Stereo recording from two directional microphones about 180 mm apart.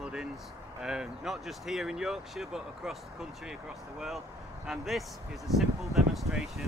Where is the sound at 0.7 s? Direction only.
5° right (ahead or behind).